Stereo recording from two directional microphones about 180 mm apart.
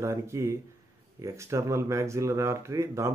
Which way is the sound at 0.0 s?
15° right (ahead or behind).